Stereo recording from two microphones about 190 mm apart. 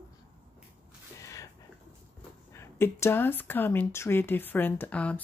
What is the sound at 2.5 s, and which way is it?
Speech, 15° left (ahead or behind).